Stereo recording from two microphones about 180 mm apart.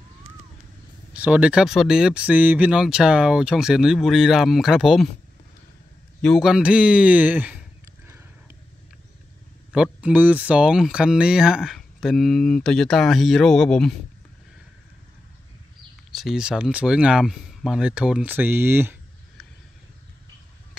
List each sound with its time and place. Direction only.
1.1 s speech: 5° right (ahead or behind)
6.2 s a man's voice: centre (ahead or behind)
9.7 s speech: 5° right (ahead or behind)
16.1 s speech: centre (ahead or behind)